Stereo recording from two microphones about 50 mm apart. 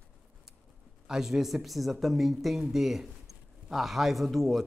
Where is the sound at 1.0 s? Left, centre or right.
Centre.